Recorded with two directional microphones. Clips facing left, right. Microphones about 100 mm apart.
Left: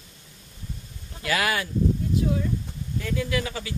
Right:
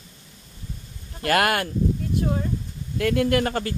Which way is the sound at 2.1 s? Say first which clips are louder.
Right 1 dB; 50° right (ahead or behind).